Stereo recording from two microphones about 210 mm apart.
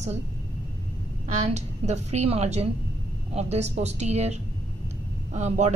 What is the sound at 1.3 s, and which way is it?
A woman's voice, 35° right (ahead or behind).